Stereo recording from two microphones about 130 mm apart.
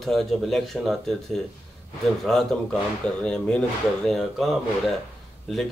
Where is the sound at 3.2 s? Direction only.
5° left (ahead or behind).